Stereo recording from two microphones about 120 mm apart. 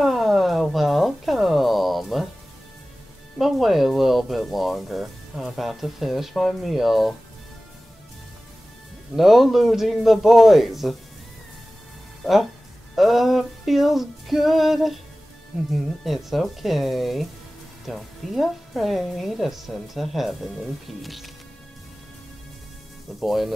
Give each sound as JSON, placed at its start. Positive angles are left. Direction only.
{"t": 0.0, "sound": "music", "side_deg": 0}
{"t": 3.3, "sound": "speech", "side_deg": 0}
{"t": 9.1, "sound": "speech", "side_deg": 0}
{"t": 12.9, "sound": "speech", "side_deg": 0}
{"t": 23.1, "sound": "speech", "side_deg": 0}